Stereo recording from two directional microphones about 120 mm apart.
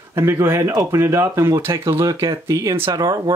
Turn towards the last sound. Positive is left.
turn(degrees=-30)  # may be behind; listen again after turning